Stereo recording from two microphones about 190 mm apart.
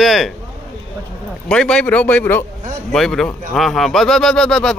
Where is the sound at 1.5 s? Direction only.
5° left (ahead or behind).